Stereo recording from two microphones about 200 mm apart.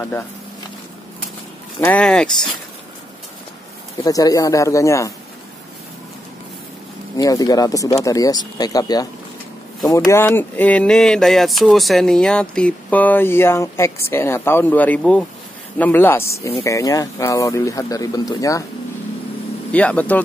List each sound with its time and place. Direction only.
1.8 s speech: 5° left (ahead or behind)
4.0 s speech: 15° left (ahead or behind)
7.2 s speech: 20° left (ahead or behind)
19.7 s speech: 5° left (ahead or behind)